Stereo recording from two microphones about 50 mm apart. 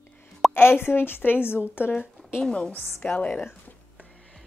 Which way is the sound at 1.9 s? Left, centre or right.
Centre.